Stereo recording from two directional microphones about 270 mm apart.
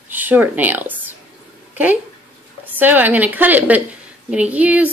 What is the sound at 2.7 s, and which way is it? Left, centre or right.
A woman's voice, centre.